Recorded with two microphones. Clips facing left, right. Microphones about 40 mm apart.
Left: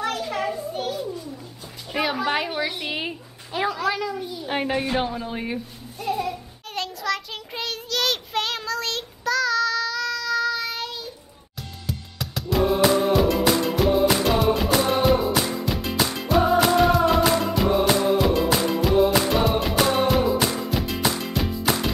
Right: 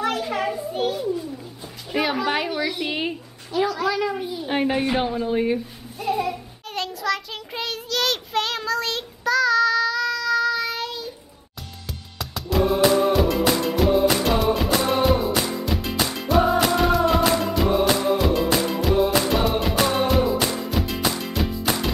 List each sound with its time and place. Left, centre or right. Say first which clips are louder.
0.0 s children playing: right 2 dB; centre
1.9 s music: right 1 dB; centre
2.5 s a woman's voice: right 2 dB; centre
3.7 s a woman's voice: right 1 dB; centre
4.2 s a woman's voice: right 3 dB; centre
4.5 s a child's voice: right 2 dB; centre
6.7 s child singing: right 2 dB; centre
11.9 s music: left 2 dB; centre